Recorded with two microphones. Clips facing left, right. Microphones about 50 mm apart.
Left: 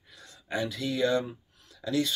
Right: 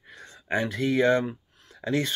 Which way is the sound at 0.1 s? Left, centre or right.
Right.